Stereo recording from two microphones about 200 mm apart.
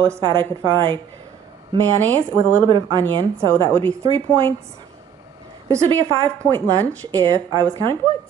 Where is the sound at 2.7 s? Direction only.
20° right (ahead or behind).